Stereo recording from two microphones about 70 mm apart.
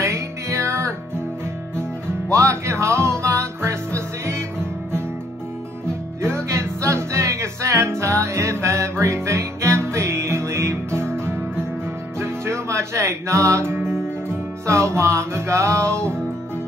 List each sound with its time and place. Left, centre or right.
0.0 s music: right
2.3 s music: right
6.2 s music: right